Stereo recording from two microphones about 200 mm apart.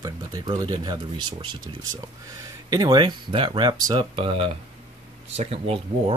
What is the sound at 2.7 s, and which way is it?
Speech, 20° right (ahead or behind).